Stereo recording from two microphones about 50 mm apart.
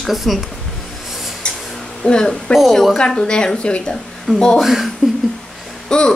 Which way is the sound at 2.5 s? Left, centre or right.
Centre.